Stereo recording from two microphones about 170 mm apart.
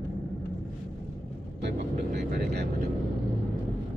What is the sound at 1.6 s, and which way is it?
Vehicle, 75° right (ahead or behind).